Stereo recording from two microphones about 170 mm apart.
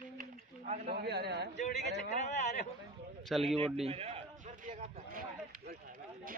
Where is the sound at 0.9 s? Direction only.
70° right (ahead or behind).